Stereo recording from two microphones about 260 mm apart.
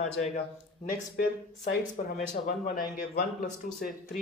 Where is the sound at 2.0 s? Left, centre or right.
Left.